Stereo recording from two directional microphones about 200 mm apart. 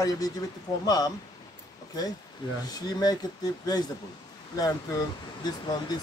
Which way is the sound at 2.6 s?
20° left (ahead or behind).